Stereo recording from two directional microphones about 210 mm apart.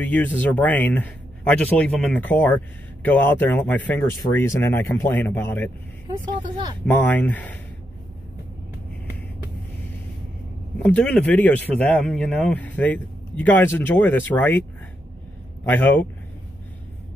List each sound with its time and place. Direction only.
0.0 s speech: 10° left (ahead or behind)
6.9 s speech: 5° left (ahead or behind)
10.8 s speech: 5° left (ahead or behind)
15.6 s speech: 10° left (ahead or behind)